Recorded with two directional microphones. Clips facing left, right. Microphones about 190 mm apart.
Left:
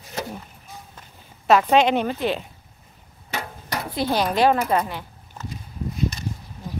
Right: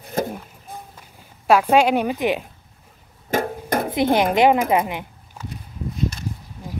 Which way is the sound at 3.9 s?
20° right (ahead or behind).